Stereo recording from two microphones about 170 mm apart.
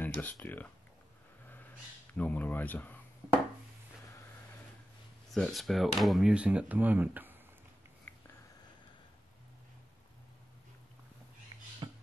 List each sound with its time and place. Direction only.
0.0 s speech: 10° left (ahead or behind)
2.1 s speech: 10° left (ahead or behind)
5.3 s speech: centre (ahead or behind)
8.1 s a sound: 5° left (ahead or behind)
11.5 s rodents: 25° right (ahead or behind)